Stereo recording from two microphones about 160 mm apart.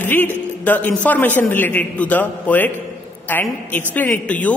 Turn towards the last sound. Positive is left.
turn(degrees=10)  # may be behind; listen again after turning